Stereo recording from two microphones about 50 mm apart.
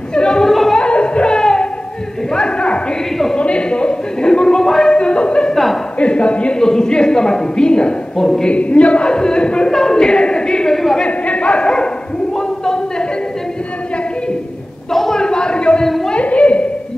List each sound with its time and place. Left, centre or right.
0.1 s speech: centre
0.5 s music: centre
0.7 s a sound: left
3.3 s speech: left
5.5 s speech: centre
5.9 s a man's voice: left
8.5 s a man's voice: left; by 11.0 s centre
11.0 s a sound: left
14.9 s a sound: centre; by 16.6 s left